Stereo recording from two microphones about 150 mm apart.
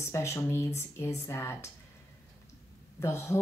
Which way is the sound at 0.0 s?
20° left (ahead or behind).